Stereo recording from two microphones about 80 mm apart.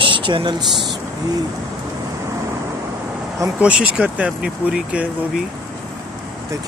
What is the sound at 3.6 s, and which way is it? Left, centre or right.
Speech, centre.